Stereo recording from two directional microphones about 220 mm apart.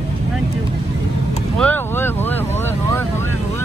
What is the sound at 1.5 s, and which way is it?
Speech, 5° left (ahead or behind).